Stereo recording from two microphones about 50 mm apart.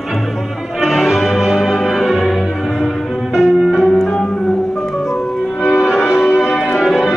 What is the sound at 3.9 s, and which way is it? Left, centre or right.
Music, centre.